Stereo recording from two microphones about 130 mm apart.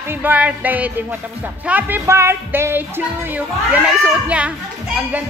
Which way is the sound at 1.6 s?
15° right (ahead or behind).